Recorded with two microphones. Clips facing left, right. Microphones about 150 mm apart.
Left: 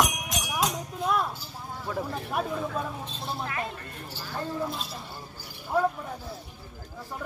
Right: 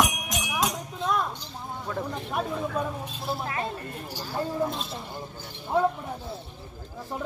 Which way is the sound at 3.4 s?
30° right (ahead or behind).